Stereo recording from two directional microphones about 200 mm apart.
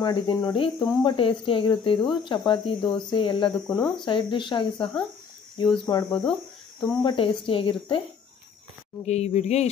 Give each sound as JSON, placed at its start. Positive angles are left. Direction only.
{"t": 0.0, "sound": "speech", "side_deg": 20}
{"t": 5.9, "sound": "speech", "side_deg": 20}
{"t": 9.0, "sound": "speech", "side_deg": 35}